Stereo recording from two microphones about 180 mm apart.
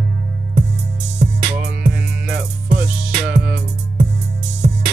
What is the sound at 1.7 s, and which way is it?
Music, 5° right (ahead or behind).